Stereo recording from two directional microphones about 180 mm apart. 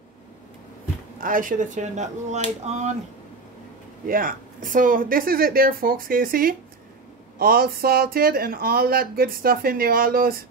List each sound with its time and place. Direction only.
1.2 s speech: 50° right (ahead or behind)
4.0 s speech: 50° right (ahead or behind)